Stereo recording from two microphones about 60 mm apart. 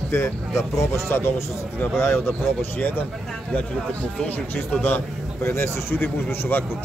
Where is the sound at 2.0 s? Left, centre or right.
Left.